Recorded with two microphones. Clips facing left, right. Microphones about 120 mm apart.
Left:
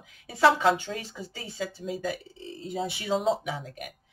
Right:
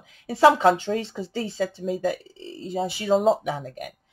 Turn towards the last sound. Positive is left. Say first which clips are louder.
# right 5 dB
turn(degrees=-40)  # may be behind; listen again after turning